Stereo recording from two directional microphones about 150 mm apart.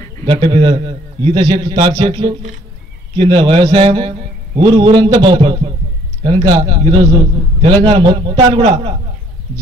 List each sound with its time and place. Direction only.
0.3 s a man's voice: 35° right (ahead or behind)